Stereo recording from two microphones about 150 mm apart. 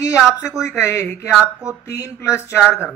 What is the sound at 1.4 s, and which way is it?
Speech, 5° right (ahead or behind).